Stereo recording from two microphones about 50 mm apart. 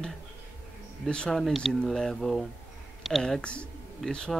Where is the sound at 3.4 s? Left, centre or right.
Left.